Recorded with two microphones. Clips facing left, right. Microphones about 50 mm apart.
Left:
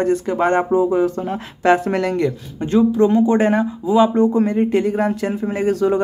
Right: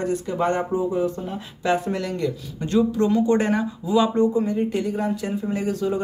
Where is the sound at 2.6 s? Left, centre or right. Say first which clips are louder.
Left 5 dB; left.